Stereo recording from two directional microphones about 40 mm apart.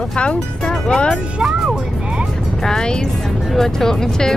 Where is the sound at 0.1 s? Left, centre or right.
Left.